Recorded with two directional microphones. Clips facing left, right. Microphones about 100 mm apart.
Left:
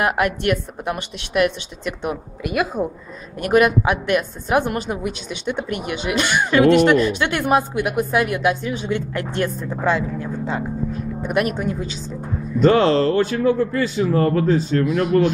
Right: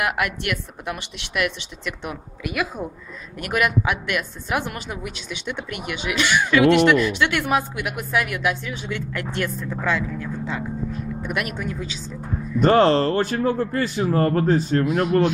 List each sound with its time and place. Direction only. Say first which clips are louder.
0.0 s speech: left 5 dB; 35° left (ahead or behind)
4.6 s speech: left 7 dB; 45° left (ahead or behind)
12.5 s speech: left 1 dB; 45° right (ahead or behind)
14.8 s speech: left 2 dB; 40° right (ahead or behind)